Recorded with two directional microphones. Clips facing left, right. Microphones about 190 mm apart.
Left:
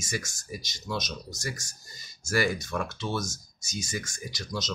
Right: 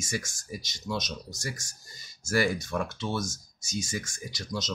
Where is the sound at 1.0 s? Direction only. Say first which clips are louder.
Left 1 dB; 30° right (ahead or behind).